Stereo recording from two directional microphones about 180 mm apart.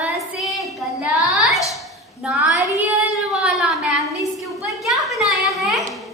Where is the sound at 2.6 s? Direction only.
15° right (ahead or behind).